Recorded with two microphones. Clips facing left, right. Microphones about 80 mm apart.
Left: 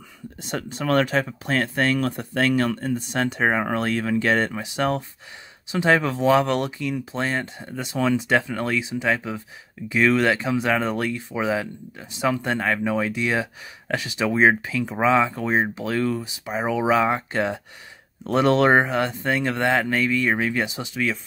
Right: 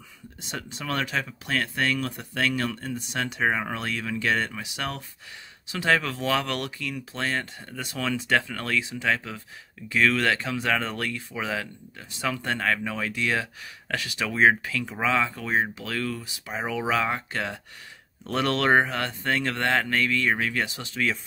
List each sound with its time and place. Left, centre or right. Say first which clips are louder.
0.4 s speech: left 7 dB; left; by 21.1 s centre